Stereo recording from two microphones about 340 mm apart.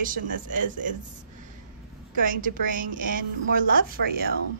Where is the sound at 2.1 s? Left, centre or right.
Right.